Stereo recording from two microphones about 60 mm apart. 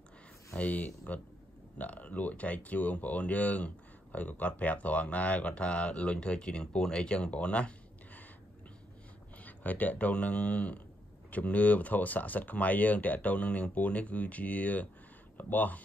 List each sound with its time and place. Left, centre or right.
0.6 s speech: left
9.4 s speech: left